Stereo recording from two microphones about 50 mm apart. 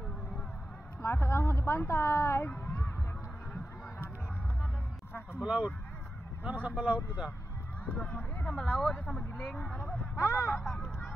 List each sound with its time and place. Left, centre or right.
1.0 s speech: left
1.5 s speech: left
1.9 s a woman's voice: left
2.4 s a sound: left
5.4 s speech: right
8.0 s speech: left
9.3 s speech: centre
10.1 s speech: left
10.5 s speech: centre